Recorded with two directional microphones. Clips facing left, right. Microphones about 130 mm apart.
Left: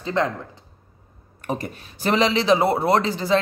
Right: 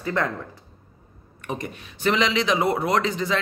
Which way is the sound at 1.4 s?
35° left (ahead or behind).